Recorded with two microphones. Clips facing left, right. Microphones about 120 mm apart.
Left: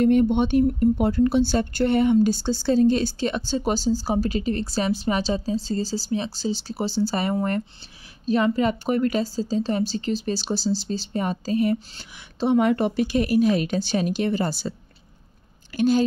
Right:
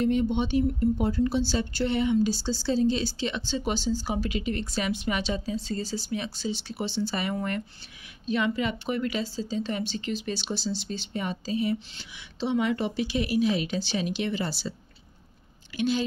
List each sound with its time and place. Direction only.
0.0 s a woman's voice: 55° left (ahead or behind)
15.7 s a woman's voice: 45° left (ahead or behind)